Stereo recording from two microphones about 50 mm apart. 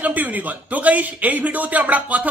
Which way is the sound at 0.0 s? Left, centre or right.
Right.